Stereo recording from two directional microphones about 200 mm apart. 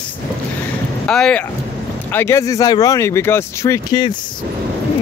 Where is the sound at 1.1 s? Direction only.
5° left (ahead or behind).